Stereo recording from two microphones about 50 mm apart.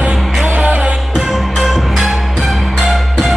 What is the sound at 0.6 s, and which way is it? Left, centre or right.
Music, right.